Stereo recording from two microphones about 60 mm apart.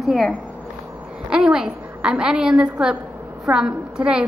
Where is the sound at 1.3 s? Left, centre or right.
Centre.